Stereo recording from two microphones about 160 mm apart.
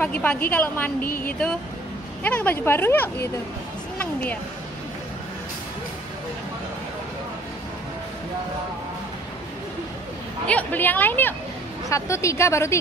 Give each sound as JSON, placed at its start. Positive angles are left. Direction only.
{"t": 0.0, "sound": "speech", "side_deg": 10}
{"t": 1.0, "sound": "speech", "side_deg": 65}
{"t": 2.2, "sound": "speech", "side_deg": 10}
{"t": 4.0, "sound": "a sound", "side_deg": 10}
{"t": 10.4, "sound": "speech", "side_deg": 10}